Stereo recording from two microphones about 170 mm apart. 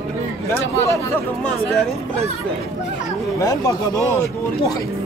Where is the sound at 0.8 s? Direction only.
15° left (ahead or behind).